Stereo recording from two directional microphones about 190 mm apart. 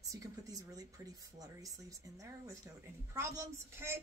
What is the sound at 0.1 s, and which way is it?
Speech, 15° right (ahead or behind).